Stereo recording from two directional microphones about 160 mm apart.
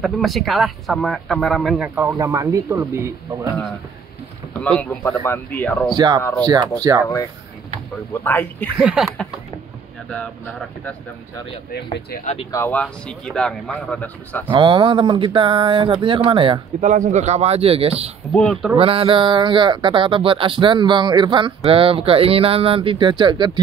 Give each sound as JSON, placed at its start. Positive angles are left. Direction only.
{"t": 0.0, "sound": "speech", "side_deg": 0}
{"t": 1.8, "sound": "speech", "side_deg": -10}
{"t": 2.1, "sound": "speech", "side_deg": -20}
{"t": 4.6, "sound": "speech", "side_deg": 5}
{"t": 5.9, "sound": "speech", "side_deg": -25}
{"t": 8.1, "sound": "speech", "side_deg": 15}
{"t": 8.7, "sound": "speech", "side_deg": -5}
{"t": 10.0, "sound": "speech", "side_deg": 10}
{"t": 12.4, "sound": "speech", "side_deg": 15}
{"t": 12.8, "sound": "speech", "side_deg": 5}
{"t": 14.5, "sound": "speech", "side_deg": -30}
{"t": 16.8, "sound": "speech", "side_deg": -50}
{"t": 18.3, "sound": "speech", "side_deg": 5}
{"t": 18.8, "sound": "speech", "side_deg": -35}